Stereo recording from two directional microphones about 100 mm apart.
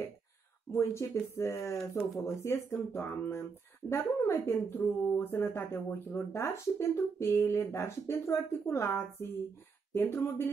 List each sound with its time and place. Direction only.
0.7 s speech: 30° left (ahead or behind)